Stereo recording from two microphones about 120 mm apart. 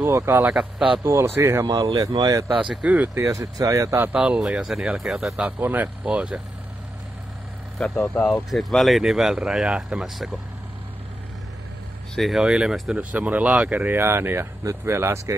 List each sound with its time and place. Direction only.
0.0 s speech: 20° right (ahead or behind)
0.5 s speech: 5° right (ahead or behind)
1.0 s speech: 20° right (ahead or behind)
1.7 s speech: 35° right (ahead or behind)
2.6 s speech: 10° right (ahead or behind)
3.3 s speech: 30° right (ahead or behind)
4.1 s speech: 10° right (ahead or behind)
5.6 s speech: 15° right (ahead or behind)
8.1 s speech: 10° left (ahead or behind)
12.2 s speech: centre (ahead or behind); by 15.3 s 20° right (ahead or behind)